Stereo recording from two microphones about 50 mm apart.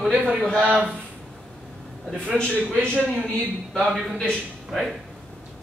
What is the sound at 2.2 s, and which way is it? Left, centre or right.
A man's voice, centre.